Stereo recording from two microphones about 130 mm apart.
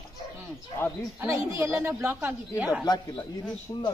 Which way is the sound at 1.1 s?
25° right (ahead or behind).